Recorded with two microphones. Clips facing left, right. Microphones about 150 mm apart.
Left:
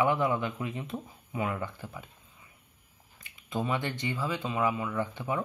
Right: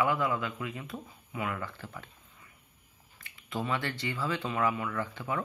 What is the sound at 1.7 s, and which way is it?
Speech, 15° left (ahead or behind).